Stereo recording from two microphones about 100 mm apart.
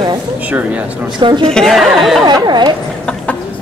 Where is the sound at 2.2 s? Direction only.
45° right (ahead or behind).